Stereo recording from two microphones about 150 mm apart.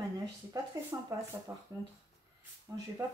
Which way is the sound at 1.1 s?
20° right (ahead or behind).